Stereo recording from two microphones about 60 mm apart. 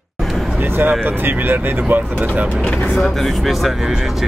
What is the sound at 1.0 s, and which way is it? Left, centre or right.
Speech, right.